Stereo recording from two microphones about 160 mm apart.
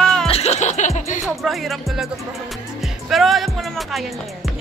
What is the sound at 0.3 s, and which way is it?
Music, 40° left (ahead or behind).